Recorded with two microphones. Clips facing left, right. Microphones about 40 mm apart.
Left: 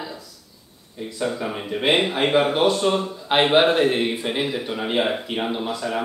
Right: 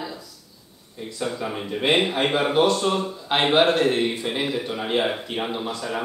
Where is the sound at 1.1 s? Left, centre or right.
Centre.